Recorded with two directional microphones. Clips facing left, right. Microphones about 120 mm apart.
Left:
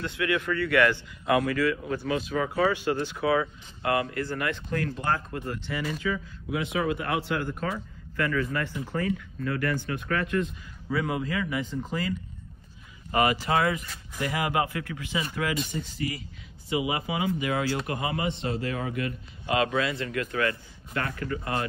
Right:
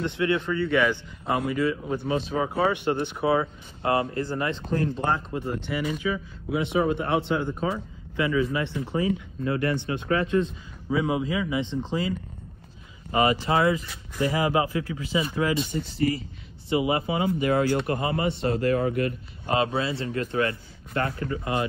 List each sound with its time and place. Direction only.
0.0 s speech: 25° right (ahead or behind)
7.0 s speech: 25° right (ahead or behind)
13.1 s a man's voice: 25° right (ahead or behind)